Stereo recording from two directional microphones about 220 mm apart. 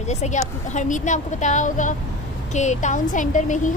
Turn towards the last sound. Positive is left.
turn(degrees=35)  # may be behind; listen again after turning